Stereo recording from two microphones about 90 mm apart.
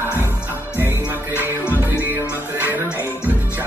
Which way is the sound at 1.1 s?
20° right (ahead or behind).